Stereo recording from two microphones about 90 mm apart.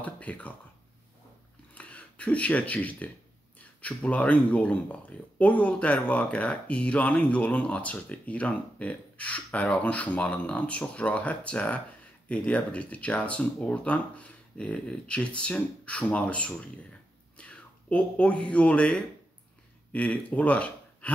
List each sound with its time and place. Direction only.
0.0 s speech: 15° left (ahead or behind)
1.7 s speech: 15° left (ahead or behind)